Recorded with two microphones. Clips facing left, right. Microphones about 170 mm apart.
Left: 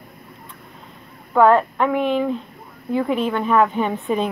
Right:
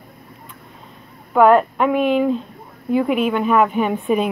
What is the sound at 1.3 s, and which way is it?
A woman's voice, 15° right (ahead or behind).